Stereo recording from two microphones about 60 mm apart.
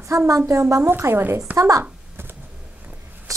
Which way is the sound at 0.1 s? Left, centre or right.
Right.